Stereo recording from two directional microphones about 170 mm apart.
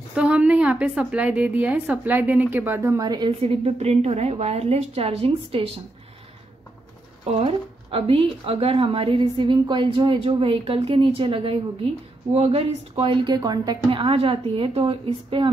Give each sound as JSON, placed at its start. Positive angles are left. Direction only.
{"t": 0.1, "sound": "a woman's voice", "side_deg": -5}
{"t": 7.2, "sound": "speech", "side_deg": -35}